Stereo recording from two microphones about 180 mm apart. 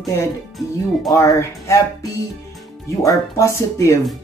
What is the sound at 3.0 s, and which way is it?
Speech, 15° left (ahead or behind).